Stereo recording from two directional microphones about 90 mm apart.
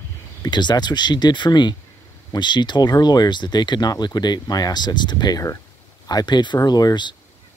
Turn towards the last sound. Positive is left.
turn(degrees=50)  # may be behind; listen again after turning